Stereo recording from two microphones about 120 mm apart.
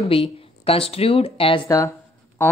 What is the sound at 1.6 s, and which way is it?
Speech, 30° left (ahead or behind).